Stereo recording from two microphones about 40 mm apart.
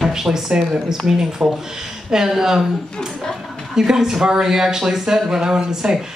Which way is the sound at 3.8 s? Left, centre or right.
Centre.